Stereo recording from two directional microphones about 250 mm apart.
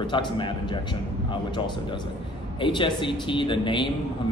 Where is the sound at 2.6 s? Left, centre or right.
Centre.